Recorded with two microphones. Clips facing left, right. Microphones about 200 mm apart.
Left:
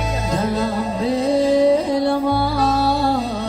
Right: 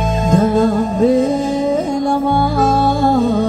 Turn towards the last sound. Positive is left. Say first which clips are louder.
# right 7 dB
turn(degrees=-50)  # may be behind; listen again after turning